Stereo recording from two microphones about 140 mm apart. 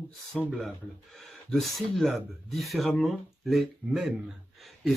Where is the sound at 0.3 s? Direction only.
5° left (ahead or behind).